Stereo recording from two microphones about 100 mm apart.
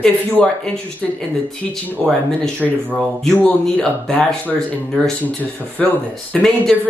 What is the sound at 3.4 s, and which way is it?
A man's voice, 10° left (ahead or behind).